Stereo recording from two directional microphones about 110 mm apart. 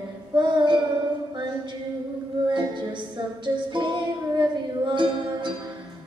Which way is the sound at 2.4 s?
45° right (ahead or behind).